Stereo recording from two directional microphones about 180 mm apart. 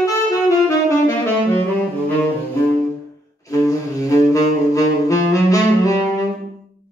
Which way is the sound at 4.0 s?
15° left (ahead or behind).